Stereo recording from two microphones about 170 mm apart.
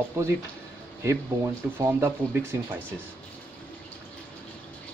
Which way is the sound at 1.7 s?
15° right (ahead or behind).